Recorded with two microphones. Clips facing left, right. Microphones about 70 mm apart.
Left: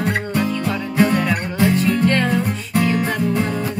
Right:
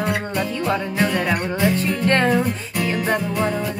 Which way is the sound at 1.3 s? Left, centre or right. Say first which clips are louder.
Left 2 dB; right.